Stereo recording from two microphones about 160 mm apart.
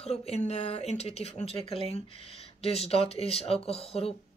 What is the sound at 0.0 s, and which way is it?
Speech, 40° left (ahead or behind).